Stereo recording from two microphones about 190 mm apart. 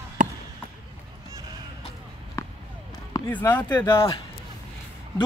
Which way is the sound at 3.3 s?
10° left (ahead or behind).